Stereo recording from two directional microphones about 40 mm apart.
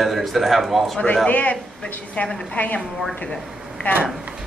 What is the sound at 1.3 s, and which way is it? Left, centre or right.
A man's voice, left.